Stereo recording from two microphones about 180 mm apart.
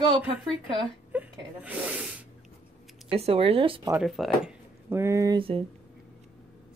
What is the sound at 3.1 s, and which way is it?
Speech, 35° right (ahead or behind).